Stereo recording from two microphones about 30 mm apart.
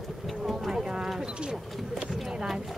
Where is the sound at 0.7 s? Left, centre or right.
Right.